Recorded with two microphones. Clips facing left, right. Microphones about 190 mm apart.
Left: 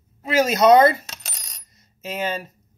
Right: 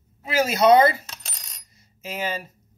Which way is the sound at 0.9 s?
70° left (ahead or behind).